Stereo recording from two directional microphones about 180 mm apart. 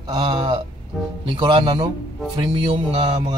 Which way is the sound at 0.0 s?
25° right (ahead or behind).